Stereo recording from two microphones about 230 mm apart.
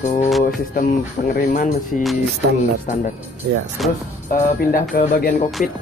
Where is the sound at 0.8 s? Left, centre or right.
Left.